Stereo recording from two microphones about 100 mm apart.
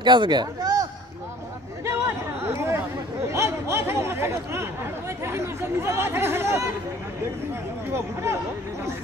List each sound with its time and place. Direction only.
0.0 s a man's voice: 50° right (ahead or behind)
1.9 s chatter: 25° right (ahead or behind)
3.3 s a sound: 25° right (ahead or behind)
5.2 s speech: 25° right (ahead or behind)
7.9 s speech: 25° right (ahead or behind)